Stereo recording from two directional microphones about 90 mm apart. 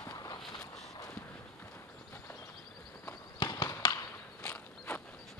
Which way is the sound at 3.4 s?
50° left (ahead or behind).